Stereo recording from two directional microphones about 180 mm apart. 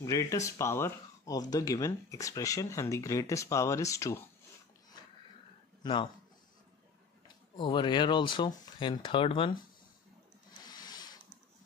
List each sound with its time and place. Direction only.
0.0 s speech: 20° left (ahead or behind)
7.2 s speech: 25° left (ahead or behind)
10.6 s a sound: 20° left (ahead or behind)